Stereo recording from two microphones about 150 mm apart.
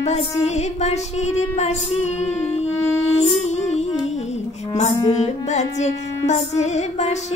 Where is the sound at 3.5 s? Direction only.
45° left (ahead or behind).